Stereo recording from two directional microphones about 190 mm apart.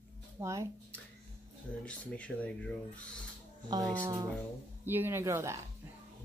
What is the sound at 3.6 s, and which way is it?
A woman's voice, 20° right (ahead or behind).